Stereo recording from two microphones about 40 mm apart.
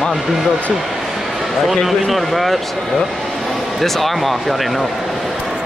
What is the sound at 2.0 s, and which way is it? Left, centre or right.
Speech, centre.